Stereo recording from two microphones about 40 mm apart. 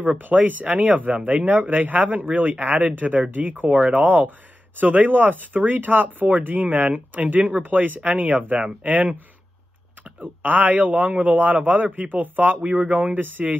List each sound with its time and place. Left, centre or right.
0.2 s speech: right
10.2 s speech: right